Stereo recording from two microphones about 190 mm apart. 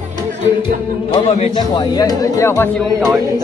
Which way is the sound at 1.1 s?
25° left (ahead or behind).